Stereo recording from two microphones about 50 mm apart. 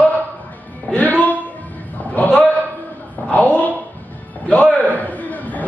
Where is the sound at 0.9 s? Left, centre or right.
Left.